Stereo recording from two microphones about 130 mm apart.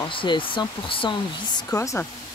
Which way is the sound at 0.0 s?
40° left (ahead or behind).